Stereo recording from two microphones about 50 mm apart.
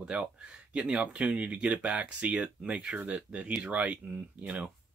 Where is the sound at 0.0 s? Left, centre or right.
Right.